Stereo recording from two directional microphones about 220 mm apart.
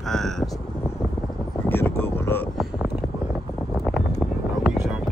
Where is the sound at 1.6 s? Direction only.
10° left (ahead or behind).